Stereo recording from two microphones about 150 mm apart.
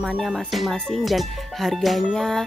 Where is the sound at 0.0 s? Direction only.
Centre (ahead or behind).